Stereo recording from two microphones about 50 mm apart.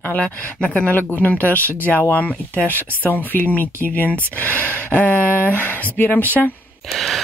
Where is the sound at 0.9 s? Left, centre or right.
Left.